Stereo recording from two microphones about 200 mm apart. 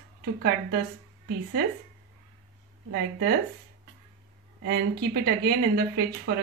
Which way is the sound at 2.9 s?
55° right (ahead or behind).